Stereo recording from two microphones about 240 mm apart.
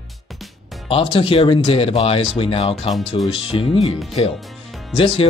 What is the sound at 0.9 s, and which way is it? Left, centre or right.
Speech, left.